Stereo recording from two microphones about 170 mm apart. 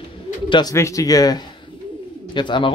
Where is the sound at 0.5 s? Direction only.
25° left (ahead or behind).